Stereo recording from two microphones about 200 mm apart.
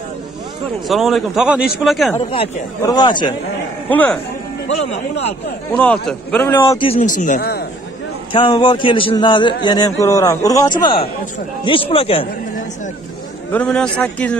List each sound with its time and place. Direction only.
0.8 s a man's voice: centre (ahead or behind)
2.1 s a man's voice: 30° left (ahead or behind)
3.9 s a man's voice: 5° left (ahead or behind)
5.8 s a man's voice: 5° left (ahead or behind)
6.8 s speech: 35° left (ahead or behind)
8.3 s a man's voice: 25° left (ahead or behind)
13.5 s a man's voice: 5° left (ahead or behind)